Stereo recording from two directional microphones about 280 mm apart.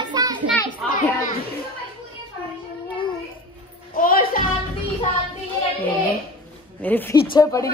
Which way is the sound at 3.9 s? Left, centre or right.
Left.